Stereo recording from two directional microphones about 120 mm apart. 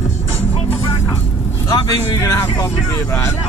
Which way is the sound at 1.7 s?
35° left (ahead or behind).